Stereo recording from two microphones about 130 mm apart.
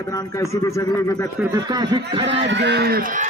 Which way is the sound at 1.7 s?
35° right (ahead or behind).